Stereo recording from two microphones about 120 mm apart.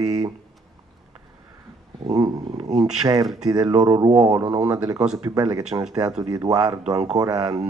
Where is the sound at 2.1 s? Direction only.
30° right (ahead or behind).